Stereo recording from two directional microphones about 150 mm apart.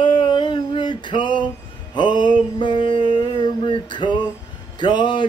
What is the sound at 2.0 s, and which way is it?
Music, 30° left (ahead or behind).